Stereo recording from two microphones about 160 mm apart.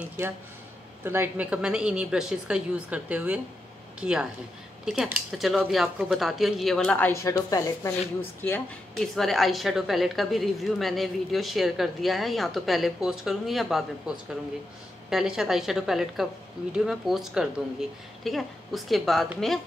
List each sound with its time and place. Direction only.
1.0 s a woman's voice: 15° right (ahead or behind); by 7.2 s 10° left (ahead or behind)
7.2 s speech: 20° left (ahead or behind)
8.9 s a woman's voice: centre (ahead or behind)